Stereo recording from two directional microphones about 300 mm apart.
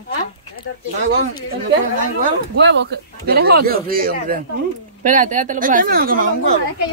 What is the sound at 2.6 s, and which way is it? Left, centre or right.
Speech, right.